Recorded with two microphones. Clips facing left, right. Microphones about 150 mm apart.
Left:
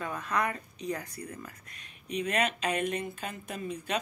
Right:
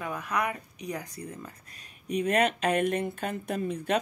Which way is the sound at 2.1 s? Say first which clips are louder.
Right 5 dB; 50° right (ahead or behind).